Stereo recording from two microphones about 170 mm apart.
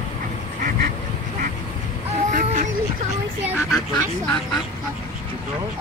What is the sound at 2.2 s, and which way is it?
Cat, 45° right (ahead or behind).